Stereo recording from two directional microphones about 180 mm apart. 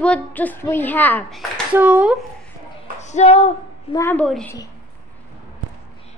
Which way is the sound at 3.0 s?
40° left (ahead or behind).